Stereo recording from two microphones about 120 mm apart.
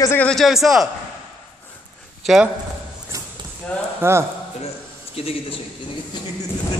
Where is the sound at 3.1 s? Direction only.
30° right (ahead or behind).